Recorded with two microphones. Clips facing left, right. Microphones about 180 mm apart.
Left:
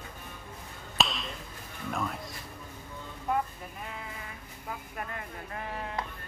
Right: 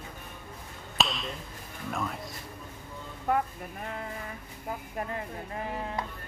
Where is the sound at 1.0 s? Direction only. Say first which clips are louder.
Right 1 dB; centre (ahead or behind).